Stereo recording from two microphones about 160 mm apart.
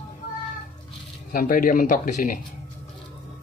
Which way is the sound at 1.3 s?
65° left (ahead or behind).